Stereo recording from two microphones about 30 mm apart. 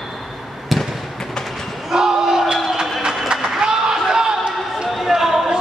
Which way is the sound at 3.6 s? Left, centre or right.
Right.